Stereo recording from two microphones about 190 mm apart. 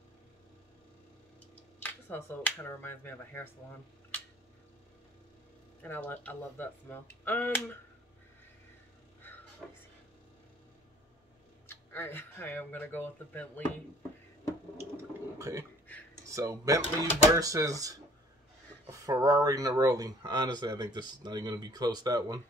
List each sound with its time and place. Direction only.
1.5 s speech: 10° left (ahead or behind)
5.8 s speech: 10° left (ahead or behind)
11.6 s speech: 10° left (ahead or behind)
14.8 s speech: 15° right (ahead or behind)